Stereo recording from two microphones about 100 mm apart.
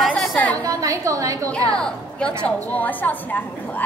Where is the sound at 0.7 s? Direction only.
35° right (ahead or behind).